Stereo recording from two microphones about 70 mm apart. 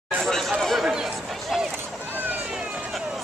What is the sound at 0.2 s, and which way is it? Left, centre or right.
Chatter, centre.